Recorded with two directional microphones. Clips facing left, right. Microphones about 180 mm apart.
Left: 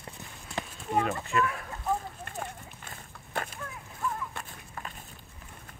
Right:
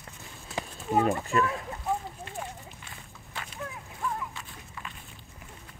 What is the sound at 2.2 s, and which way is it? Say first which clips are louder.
Run: even; 50° left (ahead or behind).